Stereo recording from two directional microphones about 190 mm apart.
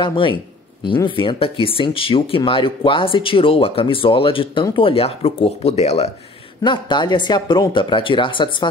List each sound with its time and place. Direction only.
0.0 s speech: 25° left (ahead or behind)